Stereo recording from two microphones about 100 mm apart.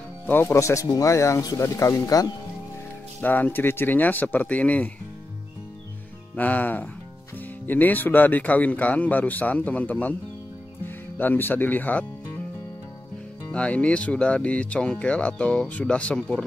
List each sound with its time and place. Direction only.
0.3 s speech: 25° left (ahead or behind)
3.2 s speech: 15° left (ahead or behind)
6.3 s speech: 15° left (ahead or behind)
13.5 s speech: 10° left (ahead or behind)